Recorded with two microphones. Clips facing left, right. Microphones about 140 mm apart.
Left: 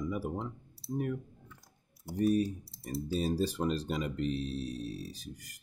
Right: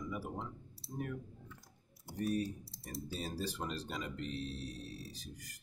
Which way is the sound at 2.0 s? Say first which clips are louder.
Left 8 dB; 15° left (ahead or behind).